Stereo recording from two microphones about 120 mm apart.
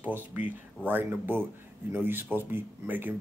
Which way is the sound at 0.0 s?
15° right (ahead or behind).